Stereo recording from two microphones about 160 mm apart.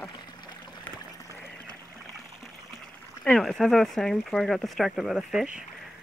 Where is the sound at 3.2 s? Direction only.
5° left (ahead or behind).